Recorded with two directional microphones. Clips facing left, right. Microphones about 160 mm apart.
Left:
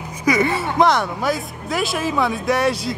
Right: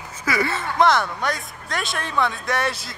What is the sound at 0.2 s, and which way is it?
Speech, 15° left (ahead or behind).